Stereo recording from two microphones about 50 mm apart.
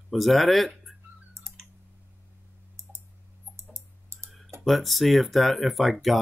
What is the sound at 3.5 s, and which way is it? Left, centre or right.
Clicking, right.